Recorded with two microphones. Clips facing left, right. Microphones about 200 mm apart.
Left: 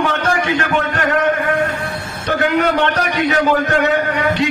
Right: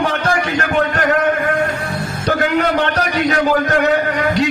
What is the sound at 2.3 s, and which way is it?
A man's voice, 40° right (ahead or behind).